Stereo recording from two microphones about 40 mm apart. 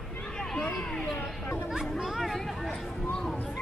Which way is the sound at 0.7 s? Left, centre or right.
Centre.